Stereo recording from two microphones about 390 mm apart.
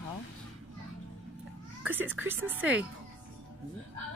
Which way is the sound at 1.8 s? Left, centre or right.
Centre.